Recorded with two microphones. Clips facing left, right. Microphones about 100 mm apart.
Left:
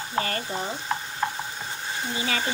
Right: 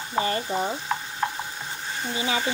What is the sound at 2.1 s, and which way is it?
Speech, 20° right (ahead or behind).